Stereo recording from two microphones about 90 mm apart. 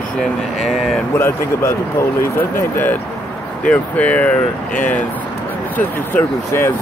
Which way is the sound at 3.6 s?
15° left (ahead or behind).